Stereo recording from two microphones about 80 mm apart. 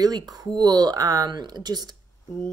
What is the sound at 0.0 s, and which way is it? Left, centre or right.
Speech, right.